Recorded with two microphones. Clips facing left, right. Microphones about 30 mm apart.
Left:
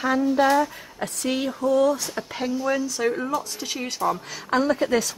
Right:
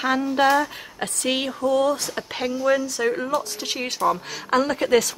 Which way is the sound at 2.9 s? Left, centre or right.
Right.